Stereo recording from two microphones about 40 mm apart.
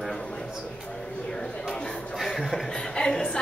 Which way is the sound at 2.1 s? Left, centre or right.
Centre.